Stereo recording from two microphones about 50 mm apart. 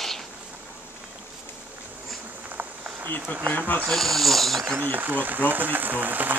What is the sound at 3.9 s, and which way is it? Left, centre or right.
Speech, centre.